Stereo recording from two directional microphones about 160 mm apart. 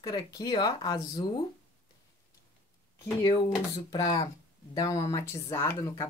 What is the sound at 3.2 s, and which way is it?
Speech, 25° left (ahead or behind).